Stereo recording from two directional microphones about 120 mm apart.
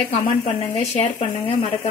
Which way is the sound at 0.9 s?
50° left (ahead or behind).